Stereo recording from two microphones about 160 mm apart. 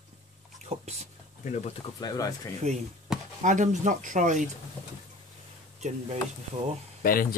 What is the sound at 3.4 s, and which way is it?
Speech, 50° right (ahead or behind).